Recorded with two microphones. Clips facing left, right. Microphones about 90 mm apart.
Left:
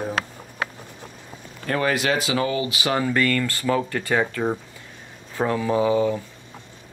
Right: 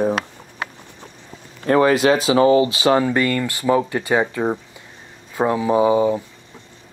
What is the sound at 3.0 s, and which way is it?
Speech, 15° right (ahead or behind).